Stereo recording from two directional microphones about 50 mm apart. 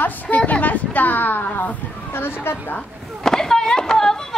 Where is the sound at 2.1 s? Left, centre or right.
Left.